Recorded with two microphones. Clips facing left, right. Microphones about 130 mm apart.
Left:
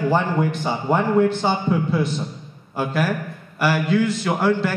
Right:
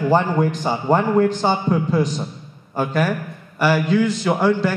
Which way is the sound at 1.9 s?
40° right (ahead or behind).